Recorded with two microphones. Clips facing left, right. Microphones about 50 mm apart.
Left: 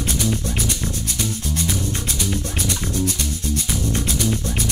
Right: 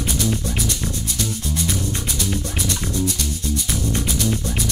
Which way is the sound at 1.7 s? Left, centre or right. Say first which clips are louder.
Even; centre.